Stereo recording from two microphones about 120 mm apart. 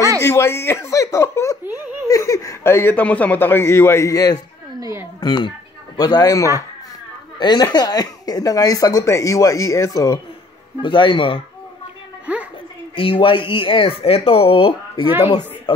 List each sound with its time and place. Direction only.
0.2 s speech: 20° left (ahead or behind)
4.7 s a sound: 30° right (ahead or behind)
5.2 s speech: 40° left (ahead or behind)
10.8 s speech: 45° left (ahead or behind)
12.3 s a child's voice: 10° right (ahead or behind)
12.9 s speech: 50° left (ahead or behind)